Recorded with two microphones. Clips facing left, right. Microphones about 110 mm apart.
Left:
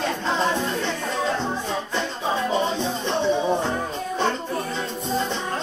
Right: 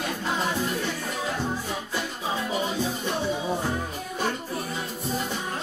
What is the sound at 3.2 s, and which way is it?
Music, 70° left (ahead or behind).